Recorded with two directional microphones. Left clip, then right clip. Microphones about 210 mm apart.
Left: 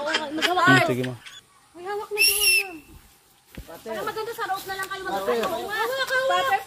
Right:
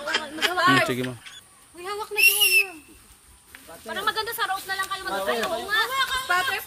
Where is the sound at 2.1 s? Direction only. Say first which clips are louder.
Right 2 dB; 20° left (ahead or behind).